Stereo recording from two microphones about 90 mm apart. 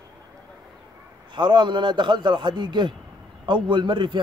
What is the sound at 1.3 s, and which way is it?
A man's voice, 60° right (ahead or behind).